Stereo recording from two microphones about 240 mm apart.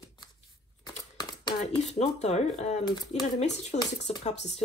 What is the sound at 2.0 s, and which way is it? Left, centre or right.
Speech, left.